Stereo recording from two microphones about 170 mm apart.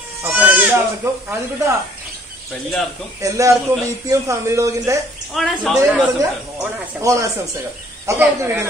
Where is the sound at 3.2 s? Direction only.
20° right (ahead or behind).